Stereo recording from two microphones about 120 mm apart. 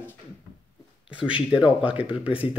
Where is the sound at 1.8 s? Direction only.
10° right (ahead or behind).